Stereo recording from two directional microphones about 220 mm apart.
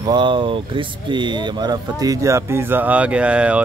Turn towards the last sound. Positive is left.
turn(degrees=-5)  # may be behind; listen again after turning